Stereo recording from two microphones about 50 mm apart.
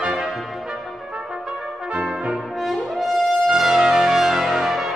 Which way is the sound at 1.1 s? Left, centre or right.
Centre.